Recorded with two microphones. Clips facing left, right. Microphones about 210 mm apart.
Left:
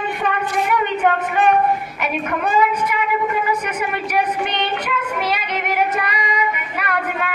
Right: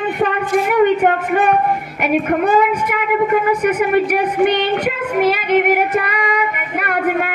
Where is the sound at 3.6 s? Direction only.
50° right (ahead or behind).